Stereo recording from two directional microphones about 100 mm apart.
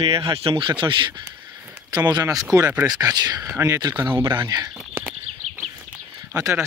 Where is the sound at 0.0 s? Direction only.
60° right (ahead or behind); by 3.4 s 40° right (ahead or behind).